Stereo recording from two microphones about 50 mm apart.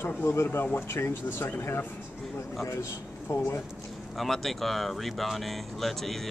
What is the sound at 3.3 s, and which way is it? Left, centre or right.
Speech, left.